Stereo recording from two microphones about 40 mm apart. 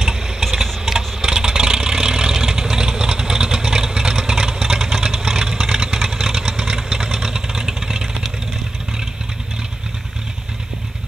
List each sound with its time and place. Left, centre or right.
0.0 s engine: centre
0.8 s vehicle: centre